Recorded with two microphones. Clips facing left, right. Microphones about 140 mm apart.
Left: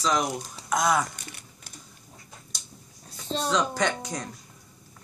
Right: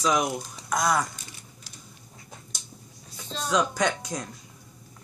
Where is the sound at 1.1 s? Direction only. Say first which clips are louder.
Left 1 dB; 60° left (ahead or behind).